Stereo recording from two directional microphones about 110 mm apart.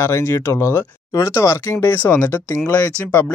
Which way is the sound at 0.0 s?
25° left (ahead or behind).